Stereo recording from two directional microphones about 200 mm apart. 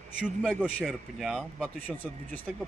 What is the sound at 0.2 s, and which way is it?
Speech, 5° right (ahead or behind).